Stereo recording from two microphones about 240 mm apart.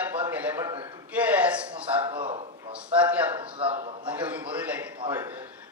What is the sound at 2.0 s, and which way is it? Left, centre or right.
Speech, right.